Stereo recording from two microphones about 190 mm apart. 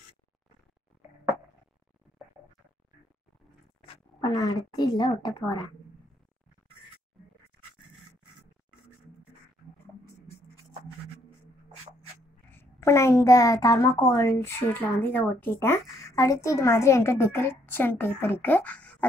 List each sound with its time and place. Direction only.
3.8 s speech: 20° left (ahead or behind)
12.4 s a woman's voice: 10° left (ahead or behind)